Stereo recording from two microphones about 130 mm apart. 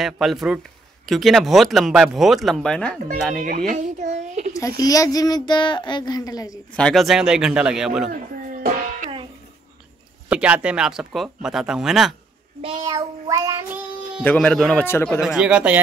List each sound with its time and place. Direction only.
0.0 s speech: centre (ahead or behind)
3.4 s speech: 70° right (ahead or behind)
4.6 s speech: 25° left (ahead or behind)
6.7 s speech: 5° left (ahead or behind)
10.3 s speech: 10° right (ahead or behind)
12.8 s child singing: 25° right (ahead or behind)
14.2 s a man's voice: 10° left (ahead or behind)
14.9 s speech: 20° left (ahead or behind)
15.1 s speech: 5° right (ahead or behind)